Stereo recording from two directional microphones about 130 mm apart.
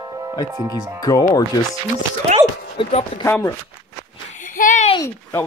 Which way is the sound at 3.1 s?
45° left (ahead or behind).